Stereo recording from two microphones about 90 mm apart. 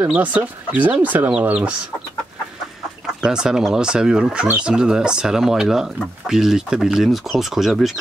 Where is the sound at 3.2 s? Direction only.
5° right (ahead or behind).